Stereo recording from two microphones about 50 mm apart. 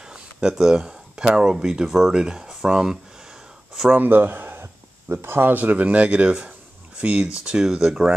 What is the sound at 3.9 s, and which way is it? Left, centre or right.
Speech, right.